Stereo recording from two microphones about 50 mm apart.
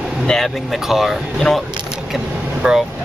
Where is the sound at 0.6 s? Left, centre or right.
Centre.